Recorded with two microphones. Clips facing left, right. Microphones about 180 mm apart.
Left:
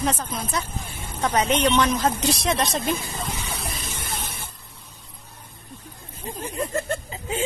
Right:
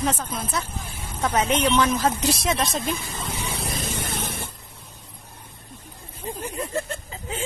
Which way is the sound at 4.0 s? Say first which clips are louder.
Right 4 dB; 85° right.